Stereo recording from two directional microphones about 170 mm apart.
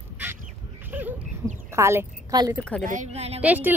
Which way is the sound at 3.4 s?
10° right (ahead or behind).